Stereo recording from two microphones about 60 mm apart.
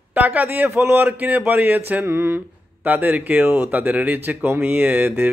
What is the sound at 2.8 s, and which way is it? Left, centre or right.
Speech, right.